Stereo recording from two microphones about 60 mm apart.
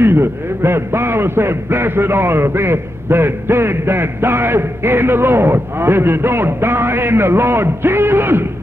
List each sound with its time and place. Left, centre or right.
0.0 s a man's voice: right